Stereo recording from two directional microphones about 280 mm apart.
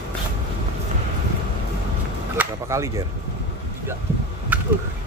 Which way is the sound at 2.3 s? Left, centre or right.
Centre.